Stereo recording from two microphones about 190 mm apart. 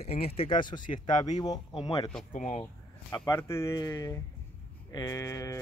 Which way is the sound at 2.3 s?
40° left (ahead or behind).